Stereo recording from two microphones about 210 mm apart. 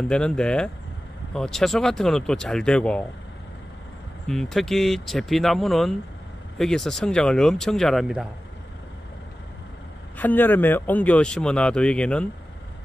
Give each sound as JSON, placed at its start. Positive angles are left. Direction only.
{"t": 0.1, "sound": "speech", "side_deg": 5}
{"t": 4.3, "sound": "speech", "side_deg": 0}
{"t": 10.1, "sound": "speech", "side_deg": 10}